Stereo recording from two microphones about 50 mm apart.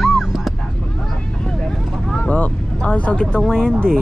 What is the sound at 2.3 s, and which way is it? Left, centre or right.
Speech, left.